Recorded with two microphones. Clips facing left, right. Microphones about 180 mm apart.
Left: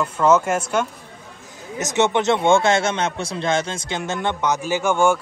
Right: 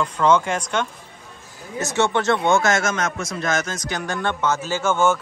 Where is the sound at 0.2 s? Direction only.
5° left (ahead or behind).